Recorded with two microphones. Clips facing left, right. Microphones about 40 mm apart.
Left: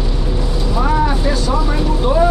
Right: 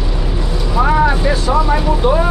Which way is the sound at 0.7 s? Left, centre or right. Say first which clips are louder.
Right 4 dB; right.